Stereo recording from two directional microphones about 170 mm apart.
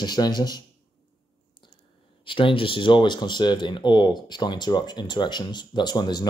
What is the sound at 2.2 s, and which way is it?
Speech, 30° left (ahead or behind).